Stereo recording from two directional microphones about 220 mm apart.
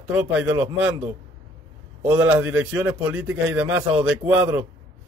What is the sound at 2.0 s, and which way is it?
A man's voice, 15° right (ahead or behind).